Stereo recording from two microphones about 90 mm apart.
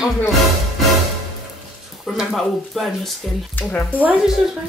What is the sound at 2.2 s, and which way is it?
Speech, centre (ahead or behind).